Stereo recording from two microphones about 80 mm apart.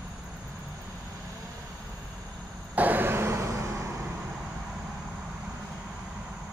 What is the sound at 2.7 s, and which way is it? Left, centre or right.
Vehicle, right.